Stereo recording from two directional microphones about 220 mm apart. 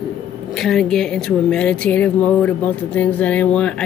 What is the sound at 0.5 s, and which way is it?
Speech, centre (ahead or behind).